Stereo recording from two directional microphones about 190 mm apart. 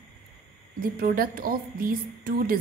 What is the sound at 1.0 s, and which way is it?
A woman's voice, 50° right (ahead or behind).